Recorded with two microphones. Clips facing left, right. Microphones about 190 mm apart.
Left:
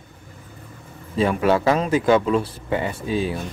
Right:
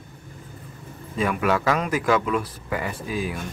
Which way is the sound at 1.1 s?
30° left (ahead or behind).